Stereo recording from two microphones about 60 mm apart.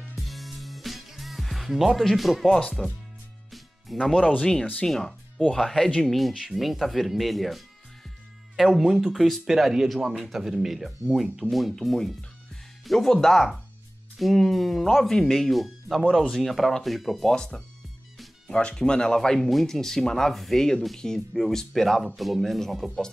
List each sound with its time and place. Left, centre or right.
0.3 s music: centre
4.1 s speech: centre
17.4 s speech: centre